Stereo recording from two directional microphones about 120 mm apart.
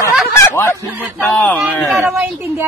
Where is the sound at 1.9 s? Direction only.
Centre (ahead or behind).